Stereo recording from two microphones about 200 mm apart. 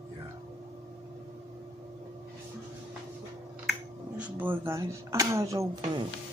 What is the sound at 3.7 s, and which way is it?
Speech, 5° right (ahead or behind).